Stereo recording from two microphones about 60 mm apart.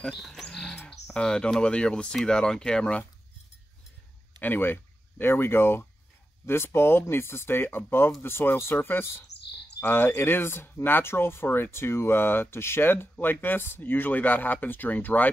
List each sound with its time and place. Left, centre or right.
0.0 s speech: centre
4.4 s speech: left